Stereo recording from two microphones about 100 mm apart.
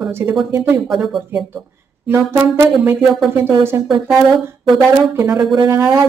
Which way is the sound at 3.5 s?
25° right (ahead or behind).